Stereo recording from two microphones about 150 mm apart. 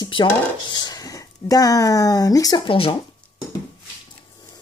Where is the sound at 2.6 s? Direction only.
35° left (ahead or behind).